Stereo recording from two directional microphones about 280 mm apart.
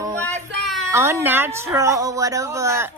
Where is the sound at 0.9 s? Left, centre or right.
Centre.